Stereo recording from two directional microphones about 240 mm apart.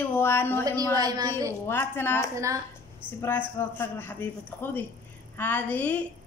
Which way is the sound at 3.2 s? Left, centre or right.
Centre.